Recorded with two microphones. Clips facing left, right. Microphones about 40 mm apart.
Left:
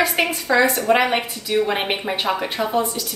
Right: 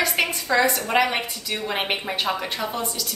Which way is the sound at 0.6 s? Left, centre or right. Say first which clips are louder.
Left 3 dB; centre.